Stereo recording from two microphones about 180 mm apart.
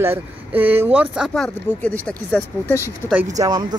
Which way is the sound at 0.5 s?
10° right (ahead or behind).